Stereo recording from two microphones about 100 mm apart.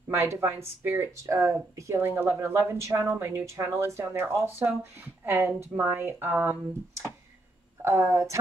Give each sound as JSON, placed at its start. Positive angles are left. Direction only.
{"t": 0.1, "sound": "speech", "side_deg": -25}